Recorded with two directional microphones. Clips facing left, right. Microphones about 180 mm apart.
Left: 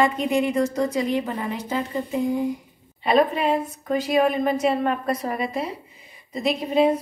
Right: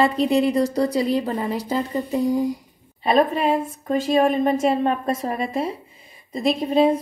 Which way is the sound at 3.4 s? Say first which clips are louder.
Right 1 dB; 25° right (ahead or behind).